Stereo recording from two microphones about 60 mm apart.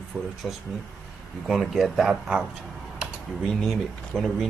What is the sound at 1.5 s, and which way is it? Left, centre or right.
Speech, centre.